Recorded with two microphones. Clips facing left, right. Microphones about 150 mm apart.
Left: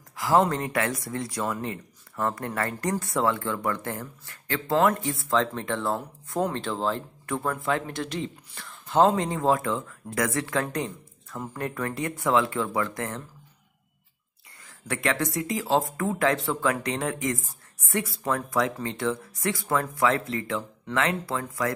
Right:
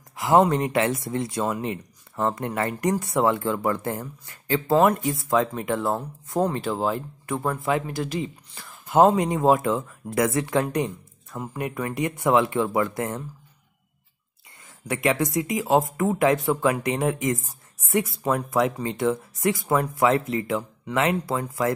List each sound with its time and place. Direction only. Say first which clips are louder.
0.1 s speech: right 4 dB; 25° right (ahead or behind)
6.4 s speech: right 3 dB; 10° right (ahead or behind)
14.9 s speech: right 4 dB; 20° right (ahead or behind)